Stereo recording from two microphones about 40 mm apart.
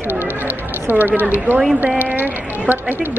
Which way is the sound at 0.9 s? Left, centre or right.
Right.